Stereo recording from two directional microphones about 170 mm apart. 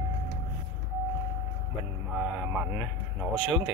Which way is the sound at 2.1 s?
5° right (ahead or behind).